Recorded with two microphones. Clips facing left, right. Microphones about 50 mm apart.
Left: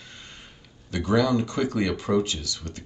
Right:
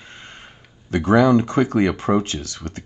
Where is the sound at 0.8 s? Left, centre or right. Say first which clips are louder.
Right 7 dB; right.